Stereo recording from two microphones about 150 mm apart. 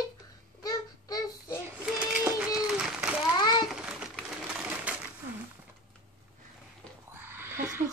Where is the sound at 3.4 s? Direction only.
30° left (ahead or behind).